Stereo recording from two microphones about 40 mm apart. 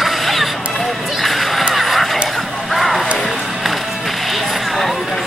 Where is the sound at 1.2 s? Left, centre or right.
Centre.